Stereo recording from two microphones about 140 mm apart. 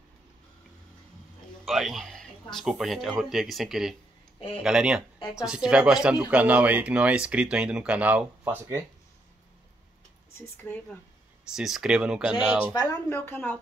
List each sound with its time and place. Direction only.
1.6 s speech: centre (ahead or behind); by 8.8 s 15° right (ahead or behind)
10.3 s speech: 15° left (ahead or behind)
11.5 s speech: 5° right (ahead or behind)
12.7 s speech: 25° left (ahead or behind)